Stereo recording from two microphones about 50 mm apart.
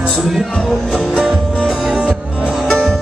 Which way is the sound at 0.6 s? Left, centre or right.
Centre.